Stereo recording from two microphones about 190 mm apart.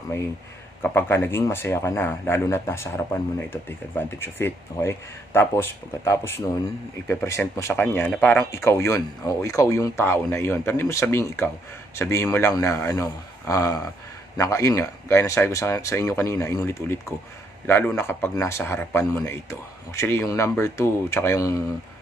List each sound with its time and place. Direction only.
0.8 s speech: 10° left (ahead or behind)